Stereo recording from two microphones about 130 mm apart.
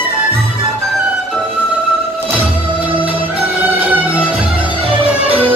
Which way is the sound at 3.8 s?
10° right (ahead or behind).